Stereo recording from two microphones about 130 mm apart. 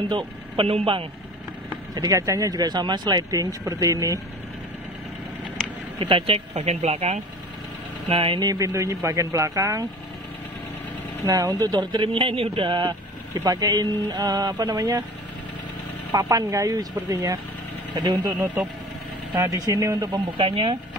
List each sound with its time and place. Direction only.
0.1 s speech: 40° right (ahead or behind)
2.0 s speech: 25° right (ahead or behind)
5.9 s speech: 40° right (ahead or behind)
8.1 s speech: 45° right (ahead or behind)
8.5 s speech: 25° right (ahead or behind)
11.2 s speech: 25° right (ahead or behind)
16.1 s speech: 25° right (ahead or behind)